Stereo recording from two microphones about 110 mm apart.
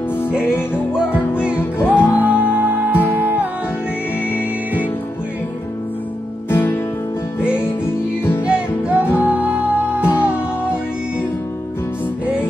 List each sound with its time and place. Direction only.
1.8 s music: 20° left (ahead or behind)
2.1 s music: 15° right (ahead or behind)
6.5 s music: 20° left (ahead or behind)
8.5 s music: 10° right (ahead or behind)